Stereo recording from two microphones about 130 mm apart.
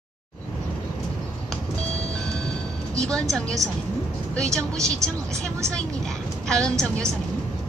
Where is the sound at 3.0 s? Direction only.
5° left (ahead or behind).